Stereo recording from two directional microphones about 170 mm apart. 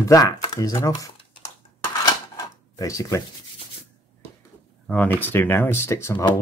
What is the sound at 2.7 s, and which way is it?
Speech, 20° left (ahead or behind).